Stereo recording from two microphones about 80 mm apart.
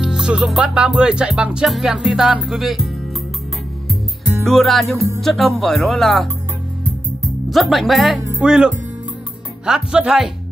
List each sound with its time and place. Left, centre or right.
0.0 s music: centre
1.7 s speech: centre
4.5 s speech: centre
4.9 s music: right
5.2 s speech: centre
7.4 s speech: centre
8.4 s music: centre